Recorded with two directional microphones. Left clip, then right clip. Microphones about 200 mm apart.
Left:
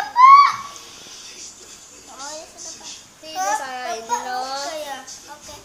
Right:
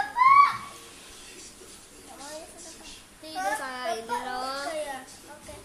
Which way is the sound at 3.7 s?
15° right (ahead or behind).